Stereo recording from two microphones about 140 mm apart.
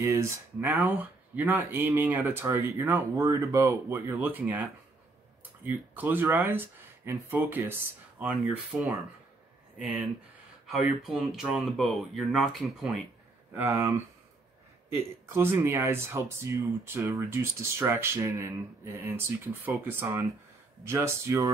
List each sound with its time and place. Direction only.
0.0 s speech: 20° right (ahead or behind); by 8.9 s 5° right (ahead or behind)
11.0 s speech: centre (ahead or behind)
13.6 s speech: 15° right (ahead or behind)
15.3 s speech: 15° right (ahead or behind)